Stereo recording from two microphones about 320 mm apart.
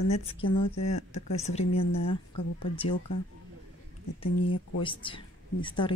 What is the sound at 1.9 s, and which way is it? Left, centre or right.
Speech, left.